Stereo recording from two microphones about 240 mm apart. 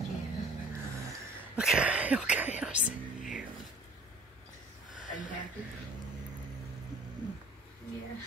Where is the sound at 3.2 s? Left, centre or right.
Centre.